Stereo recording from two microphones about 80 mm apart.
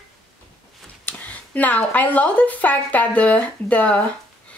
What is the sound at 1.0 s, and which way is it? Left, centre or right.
A woman's voice, left.